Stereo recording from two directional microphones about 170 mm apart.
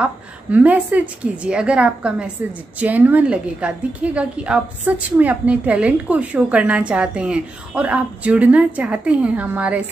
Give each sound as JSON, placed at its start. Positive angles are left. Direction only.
{"t": 0.0, "sound": "a woman's voice", "side_deg": -10}